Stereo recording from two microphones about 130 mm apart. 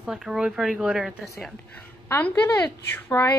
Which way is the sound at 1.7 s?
15° left (ahead or behind).